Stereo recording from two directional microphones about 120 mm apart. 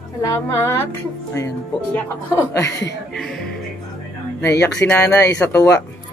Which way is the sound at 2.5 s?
25° left (ahead or behind).